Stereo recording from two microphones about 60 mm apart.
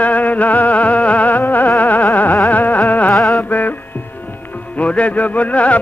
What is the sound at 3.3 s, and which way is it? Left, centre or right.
Music, left.